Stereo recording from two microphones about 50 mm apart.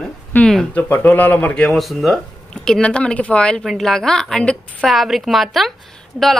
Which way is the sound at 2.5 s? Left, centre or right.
Centre.